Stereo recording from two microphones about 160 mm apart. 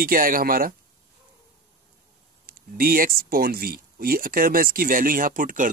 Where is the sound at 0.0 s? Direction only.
60° right (ahead or behind).